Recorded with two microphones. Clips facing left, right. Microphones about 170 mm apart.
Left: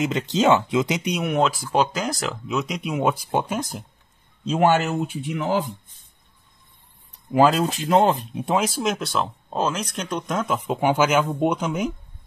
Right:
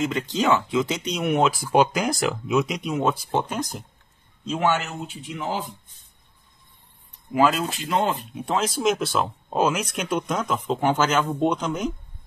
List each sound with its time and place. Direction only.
0.0 s speech: 20° left (ahead or behind)
1.2 s speech: 5° right (ahead or behind)
4.5 s speech: 40° left (ahead or behind)
5.2 s speech: 70° left (ahead or behind)
7.3 s speech: 40° left (ahead or behind)
8.5 s speech: 10° left (ahead or behind)